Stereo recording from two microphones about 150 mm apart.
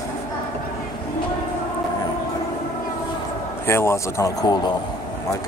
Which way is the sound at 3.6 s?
15° left (ahead or behind).